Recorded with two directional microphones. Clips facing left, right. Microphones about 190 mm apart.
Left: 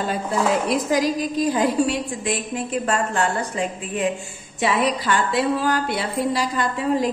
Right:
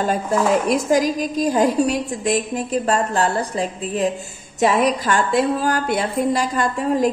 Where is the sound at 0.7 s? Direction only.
45° right (ahead or behind).